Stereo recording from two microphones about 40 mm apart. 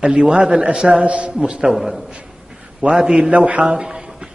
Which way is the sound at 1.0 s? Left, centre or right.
Right.